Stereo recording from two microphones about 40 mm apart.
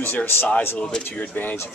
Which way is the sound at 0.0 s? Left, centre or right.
Left.